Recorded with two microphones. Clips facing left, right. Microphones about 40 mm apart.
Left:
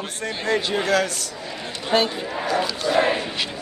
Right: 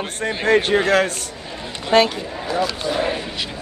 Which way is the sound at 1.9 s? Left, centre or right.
Right.